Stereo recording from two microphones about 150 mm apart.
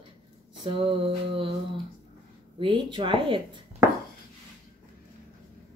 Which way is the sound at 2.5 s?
35° right (ahead or behind).